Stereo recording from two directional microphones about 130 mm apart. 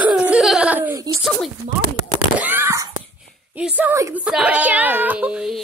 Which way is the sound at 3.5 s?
10° right (ahead or behind).